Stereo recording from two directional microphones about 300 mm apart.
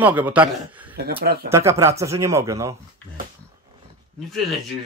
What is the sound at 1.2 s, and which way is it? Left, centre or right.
Speech, right.